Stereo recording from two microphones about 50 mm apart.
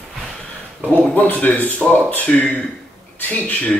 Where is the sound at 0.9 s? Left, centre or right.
Left.